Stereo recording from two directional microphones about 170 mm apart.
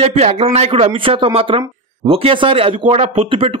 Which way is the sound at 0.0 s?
40° right (ahead or behind).